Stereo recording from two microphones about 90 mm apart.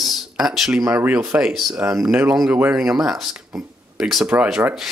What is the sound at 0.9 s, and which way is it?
Speech, 20° right (ahead or behind).